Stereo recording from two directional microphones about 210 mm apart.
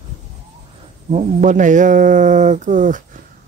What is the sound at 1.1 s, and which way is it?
Speech, 35° right (ahead or behind).